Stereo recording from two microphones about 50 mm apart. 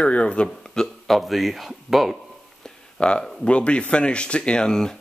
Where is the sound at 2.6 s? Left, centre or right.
Centre.